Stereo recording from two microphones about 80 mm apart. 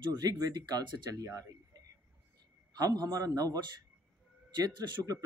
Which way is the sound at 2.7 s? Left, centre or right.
Right.